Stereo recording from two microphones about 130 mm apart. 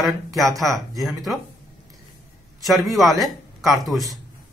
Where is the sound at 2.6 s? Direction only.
Centre (ahead or behind).